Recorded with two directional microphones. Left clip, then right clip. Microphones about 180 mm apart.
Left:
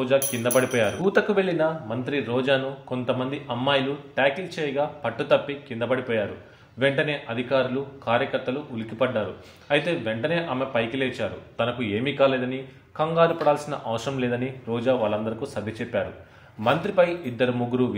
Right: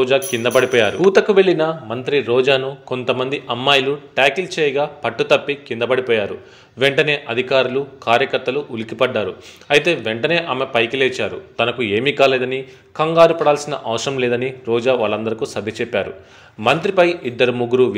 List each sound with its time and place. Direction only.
0.0 s a man's voice: 30° right (ahead or behind)